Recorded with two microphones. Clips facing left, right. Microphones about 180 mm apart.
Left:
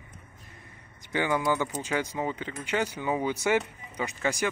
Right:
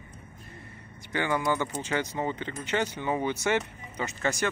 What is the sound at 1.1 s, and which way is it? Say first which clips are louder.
Speech: left 1 dB; 15° left (ahead or behind).